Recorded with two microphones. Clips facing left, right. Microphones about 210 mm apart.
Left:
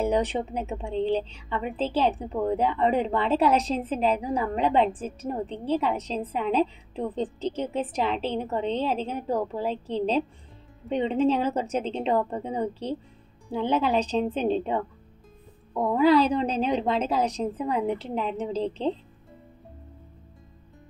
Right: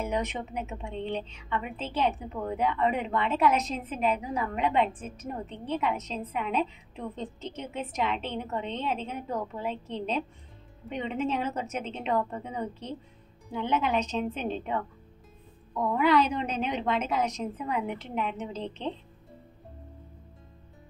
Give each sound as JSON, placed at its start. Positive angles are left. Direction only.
{"t": 0.0, "sound": "a woman's voice", "side_deg": 30}